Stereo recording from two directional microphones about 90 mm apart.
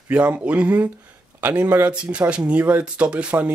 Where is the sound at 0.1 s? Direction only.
15° right (ahead or behind).